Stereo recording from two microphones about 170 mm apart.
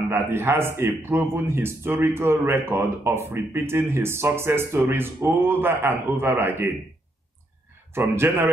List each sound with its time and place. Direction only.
0.1 s a man's voice: 15° right (ahead or behind)
7.9 s a man's voice: 15° right (ahead or behind)